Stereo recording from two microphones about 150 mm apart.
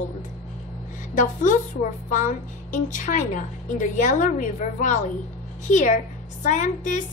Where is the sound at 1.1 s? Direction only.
55° left (ahead or behind).